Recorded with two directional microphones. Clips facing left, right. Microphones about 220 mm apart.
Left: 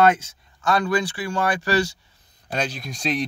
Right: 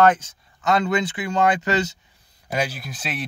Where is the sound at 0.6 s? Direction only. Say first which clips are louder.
Right 1 dB; 20° right (ahead or behind).